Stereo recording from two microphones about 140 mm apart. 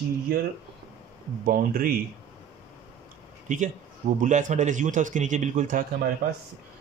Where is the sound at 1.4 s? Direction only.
90° right.